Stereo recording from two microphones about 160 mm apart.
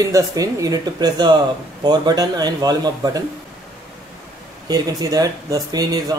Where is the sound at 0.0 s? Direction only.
20° right (ahead or behind).